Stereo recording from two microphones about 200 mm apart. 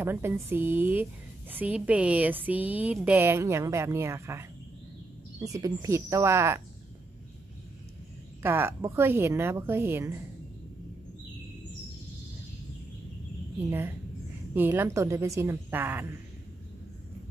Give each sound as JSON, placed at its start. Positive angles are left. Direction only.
{"t": 0.0, "sound": "speech", "side_deg": -10}
{"t": 8.4, "sound": "speech", "side_deg": -10}
{"t": 13.7, "sound": "speech", "side_deg": -10}